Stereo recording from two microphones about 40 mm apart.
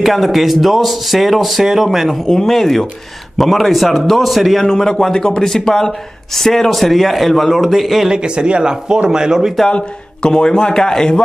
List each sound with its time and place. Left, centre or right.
0.0 s a man's voice: centre
2.2 s a man's voice: centre
4.6 s a man's voice: centre
8.1 s speech: right
9.7 s a man's voice: left